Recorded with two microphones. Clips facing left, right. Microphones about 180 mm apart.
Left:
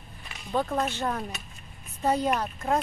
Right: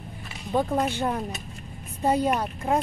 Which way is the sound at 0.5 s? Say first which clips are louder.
Right 3 dB; 15° right (ahead or behind).